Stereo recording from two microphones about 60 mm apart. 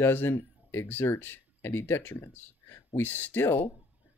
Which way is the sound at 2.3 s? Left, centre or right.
Left.